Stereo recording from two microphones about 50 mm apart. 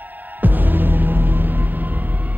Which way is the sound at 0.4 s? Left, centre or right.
Right.